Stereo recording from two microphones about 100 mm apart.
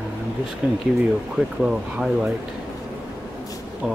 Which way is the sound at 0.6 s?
10° right (ahead or behind).